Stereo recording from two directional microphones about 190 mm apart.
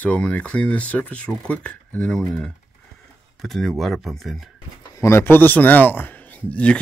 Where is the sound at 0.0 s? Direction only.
10° left (ahead or behind).